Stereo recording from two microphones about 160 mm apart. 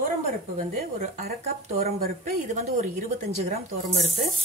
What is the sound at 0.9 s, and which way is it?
Speech, 60° right (ahead or behind).